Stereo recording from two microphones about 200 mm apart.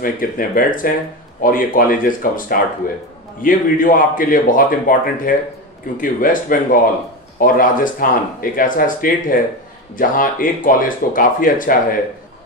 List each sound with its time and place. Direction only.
0.0 s speech: 45° left (ahead or behind)